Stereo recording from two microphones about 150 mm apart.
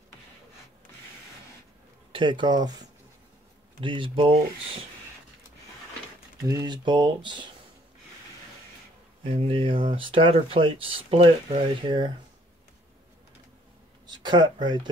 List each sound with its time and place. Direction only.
2.1 s speech: 30° right (ahead or behind)
3.8 s speech: 35° right (ahead or behind)
6.4 s speech: 25° right (ahead or behind)
9.2 s speech: 40° right (ahead or behind)
14.0 s speech: 30° right (ahead or behind)